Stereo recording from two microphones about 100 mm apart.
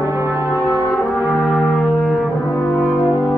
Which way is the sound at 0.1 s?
25° right (ahead or behind).